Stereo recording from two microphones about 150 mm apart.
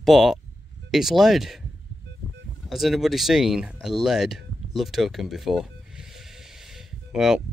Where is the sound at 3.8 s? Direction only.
Centre (ahead or behind).